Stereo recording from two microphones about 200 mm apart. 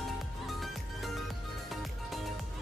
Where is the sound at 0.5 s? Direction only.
Centre (ahead or behind).